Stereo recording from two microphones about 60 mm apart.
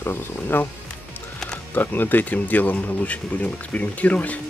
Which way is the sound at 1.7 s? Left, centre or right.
Left.